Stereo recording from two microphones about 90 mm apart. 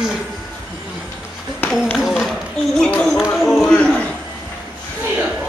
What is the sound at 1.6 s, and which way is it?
Run, 20° left (ahead or behind).